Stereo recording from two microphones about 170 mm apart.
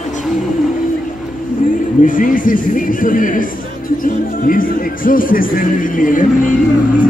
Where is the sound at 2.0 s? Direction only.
50° left (ahead or behind).